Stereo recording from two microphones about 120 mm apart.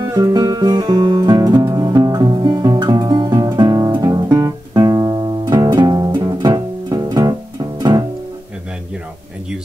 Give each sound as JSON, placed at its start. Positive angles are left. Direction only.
{"t": 0.0, "sound": "guitar", "side_deg": -30}
{"t": 4.7, "sound": "music", "side_deg": -35}